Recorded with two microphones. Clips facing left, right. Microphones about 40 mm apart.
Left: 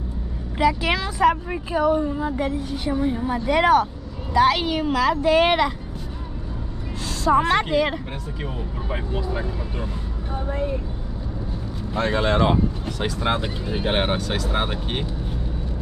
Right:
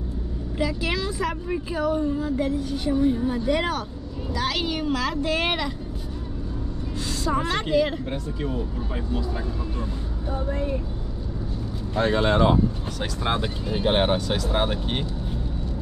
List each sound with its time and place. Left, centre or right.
0.6 s a woman's voice: left
3.4 s speech: left
4.3 s speech: left
7.3 s speech: left
11.9 s speech: centre
12.3 s speech: left
13.2 s a woman's voice: centre
14.1 s speech: centre
14.5 s a woman's voice: centre